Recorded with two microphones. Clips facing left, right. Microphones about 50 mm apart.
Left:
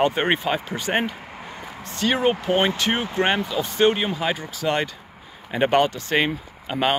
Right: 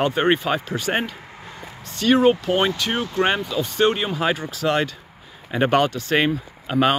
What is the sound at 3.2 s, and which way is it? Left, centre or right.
Speech, centre.